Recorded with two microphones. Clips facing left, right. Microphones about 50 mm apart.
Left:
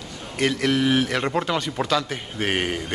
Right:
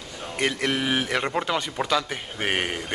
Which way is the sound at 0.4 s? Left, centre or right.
Centre.